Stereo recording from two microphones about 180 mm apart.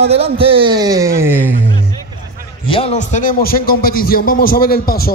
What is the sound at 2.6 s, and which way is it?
A man's voice, 30° left (ahead or behind).